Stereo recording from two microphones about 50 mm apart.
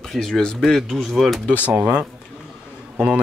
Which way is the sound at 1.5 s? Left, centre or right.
Right.